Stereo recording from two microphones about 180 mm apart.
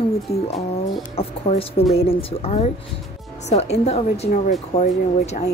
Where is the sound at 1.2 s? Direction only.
35° left (ahead or behind).